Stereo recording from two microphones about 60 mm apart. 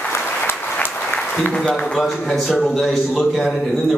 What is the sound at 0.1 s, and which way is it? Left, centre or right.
Applause, left.